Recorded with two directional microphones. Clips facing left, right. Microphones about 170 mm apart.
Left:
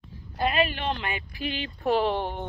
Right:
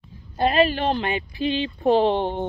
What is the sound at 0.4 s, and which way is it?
Speech, 35° right (ahead or behind).